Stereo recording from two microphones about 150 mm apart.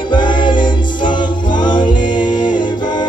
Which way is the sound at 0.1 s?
30° left (ahead or behind).